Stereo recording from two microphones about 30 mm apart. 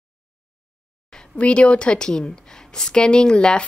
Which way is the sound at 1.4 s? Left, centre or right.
Left.